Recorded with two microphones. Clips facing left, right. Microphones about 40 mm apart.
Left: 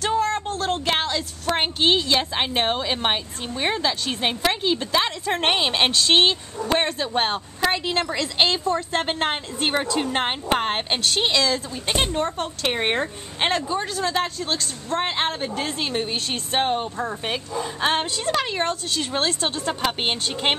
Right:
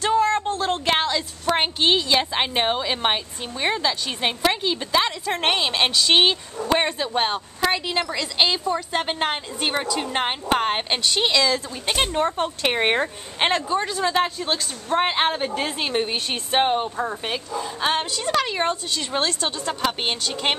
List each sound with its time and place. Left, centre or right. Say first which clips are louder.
0.0 s a woman's voice: right 3 dB; centre
6.0 s a woman's voice: even; centre
7.2 s a woman's voice: even; centre
17.3 s a woman's voice: even; centre
18.3 s a woman's voice: right 2 dB; centre
19.2 s a woman's voice: left 1 dB; centre